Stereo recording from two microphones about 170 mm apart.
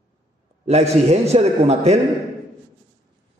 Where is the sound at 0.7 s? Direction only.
40° right (ahead or behind).